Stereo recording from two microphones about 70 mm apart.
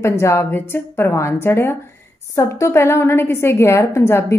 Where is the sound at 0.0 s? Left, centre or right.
Left.